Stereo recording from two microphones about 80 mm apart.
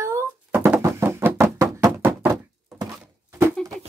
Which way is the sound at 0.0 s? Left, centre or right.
Right.